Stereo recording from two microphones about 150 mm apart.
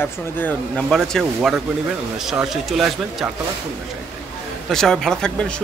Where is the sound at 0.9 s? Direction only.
Centre (ahead or behind).